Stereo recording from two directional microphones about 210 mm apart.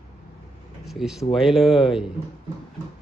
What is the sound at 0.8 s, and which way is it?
Speech, centre (ahead or behind).